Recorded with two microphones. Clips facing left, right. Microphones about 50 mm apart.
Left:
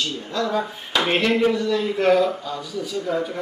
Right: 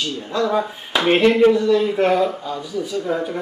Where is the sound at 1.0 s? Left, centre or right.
Centre.